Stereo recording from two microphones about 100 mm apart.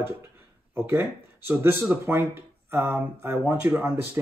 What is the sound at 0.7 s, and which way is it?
Speech, 25° right (ahead or behind).